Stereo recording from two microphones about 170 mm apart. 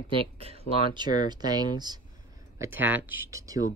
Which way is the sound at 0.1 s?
35° right (ahead or behind).